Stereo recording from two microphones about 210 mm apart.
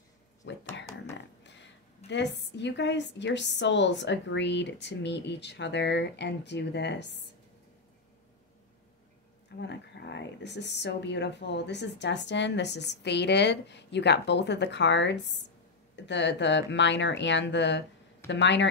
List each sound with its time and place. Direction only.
0.4 s a sound: 55° left (ahead or behind)
2.0 s speech: 55° left (ahead or behind)
9.6 s speech: 55° left (ahead or behind)